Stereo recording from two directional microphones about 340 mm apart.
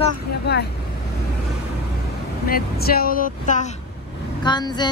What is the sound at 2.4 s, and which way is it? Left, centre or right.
A woman's voice, left.